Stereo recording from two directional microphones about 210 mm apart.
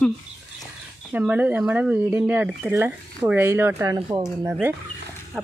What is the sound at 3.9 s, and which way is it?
Speech, 20° right (ahead or behind).